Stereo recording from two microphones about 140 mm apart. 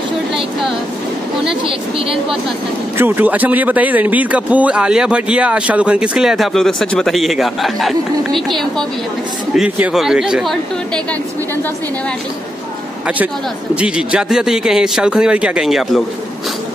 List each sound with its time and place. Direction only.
1.7 s a woman's voice: 40° right (ahead or behind)
3.0 s a man's voice: 15° right (ahead or behind)
13.7 s a man's voice: 5° right (ahead or behind)